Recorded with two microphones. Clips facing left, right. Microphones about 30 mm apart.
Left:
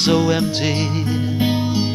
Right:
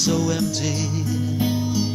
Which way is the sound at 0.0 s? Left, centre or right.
Left.